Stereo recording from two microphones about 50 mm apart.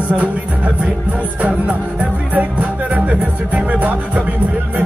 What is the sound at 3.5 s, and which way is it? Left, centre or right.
Music, right.